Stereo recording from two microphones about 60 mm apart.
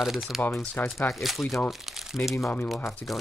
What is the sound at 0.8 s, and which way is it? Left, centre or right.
Speech, left.